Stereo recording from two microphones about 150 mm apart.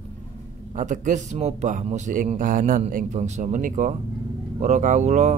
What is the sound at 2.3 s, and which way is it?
Speech, 65° right (ahead or behind).